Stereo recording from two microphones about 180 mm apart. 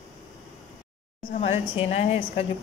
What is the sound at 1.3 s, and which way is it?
A woman's voice, 35° left (ahead or behind).